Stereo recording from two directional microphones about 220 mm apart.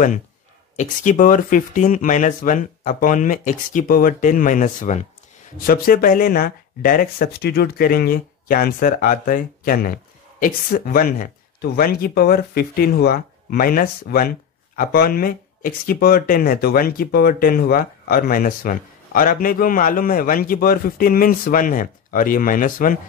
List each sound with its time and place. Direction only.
0.7 s speech: 35° left (ahead or behind)